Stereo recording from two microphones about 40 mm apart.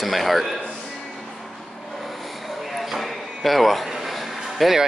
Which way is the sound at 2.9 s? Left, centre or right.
Centre.